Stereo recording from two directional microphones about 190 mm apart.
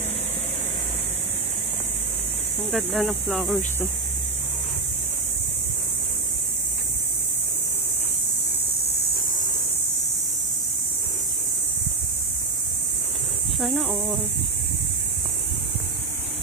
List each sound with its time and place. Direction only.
2.7 s speech: centre (ahead or behind)
8.6 s a sound: 55° left (ahead or behind)
13.6 s speech: centre (ahead or behind)